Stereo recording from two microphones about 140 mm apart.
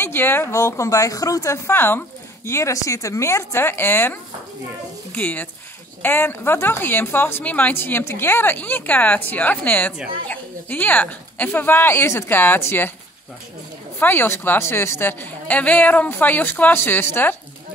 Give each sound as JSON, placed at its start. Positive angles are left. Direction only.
{"t": 0.0, "sound": "a woman's voice", "side_deg": 15}
{"t": 13.9, "sound": "a woman's voice", "side_deg": 15}